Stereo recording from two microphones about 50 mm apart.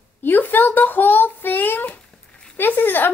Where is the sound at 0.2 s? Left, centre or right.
Left.